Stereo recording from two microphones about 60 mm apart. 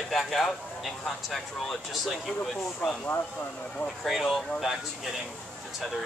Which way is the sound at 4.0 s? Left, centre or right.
Centre.